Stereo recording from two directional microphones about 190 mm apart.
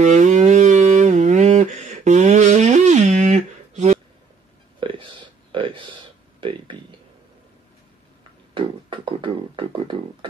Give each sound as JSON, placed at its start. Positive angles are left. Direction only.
{"t": 0.0, "sound": "music", "side_deg": -40}
{"t": 4.7, "sound": "a sound", "side_deg": -25}
{"t": 8.5, "sound": "music", "side_deg": -25}